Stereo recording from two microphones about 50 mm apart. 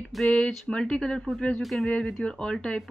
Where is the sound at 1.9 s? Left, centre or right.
Centre.